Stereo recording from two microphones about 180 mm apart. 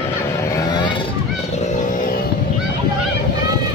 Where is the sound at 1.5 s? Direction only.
45° left (ahead or behind).